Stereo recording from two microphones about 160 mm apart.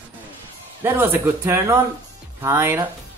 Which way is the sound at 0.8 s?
15° right (ahead or behind).